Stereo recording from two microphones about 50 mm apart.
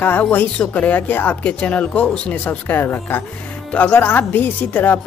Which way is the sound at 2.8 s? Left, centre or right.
Left.